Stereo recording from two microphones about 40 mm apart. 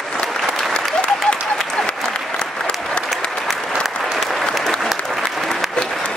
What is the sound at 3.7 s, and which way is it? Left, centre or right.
Applause, centre.